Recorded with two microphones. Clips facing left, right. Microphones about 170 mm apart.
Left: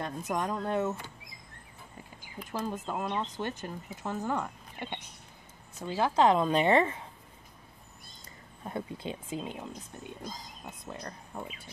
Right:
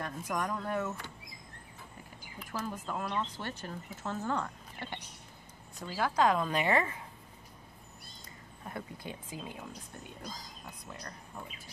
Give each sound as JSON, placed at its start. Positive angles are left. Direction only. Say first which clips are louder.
{"t": 0.0, "sound": "a woman's voice", "louder": "left 3 dB", "side_deg": 25}
{"t": 2.5, "sound": "a woman's voice", "louder": "left 3 dB", "side_deg": 20}
{"t": 8.6, "sound": "a woman's voice", "louder": "left 6 dB", "side_deg": 25}
{"t": 10.7, "sound": "a woman's voice", "louder": "left 6 dB", "side_deg": 25}